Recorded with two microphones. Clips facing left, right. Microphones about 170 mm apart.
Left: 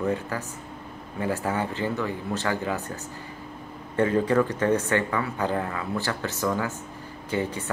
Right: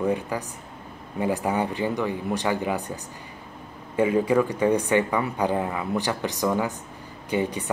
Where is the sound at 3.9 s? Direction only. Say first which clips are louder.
Right 1 dB; 10° right (ahead or behind).